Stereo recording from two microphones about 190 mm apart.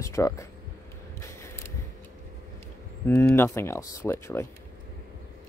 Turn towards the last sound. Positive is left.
turn(degrees=15)  # may be behind; listen again after turning